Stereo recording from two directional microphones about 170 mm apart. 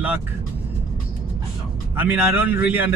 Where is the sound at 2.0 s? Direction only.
10° right (ahead or behind).